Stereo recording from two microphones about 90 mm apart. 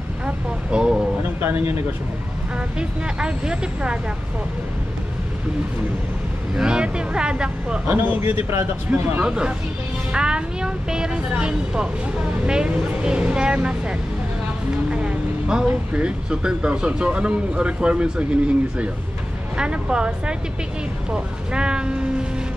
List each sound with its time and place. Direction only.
0.7 s speech: 10° right (ahead or behind)
1.4 s speech: 25° right (ahead or behind)
2.8 s speech: 10° right (ahead or behind)
6.5 s speech: 10° right (ahead or behind); by 9.2 s 25° right (ahead or behind)
9.2 s speech: 10° right (ahead or behind)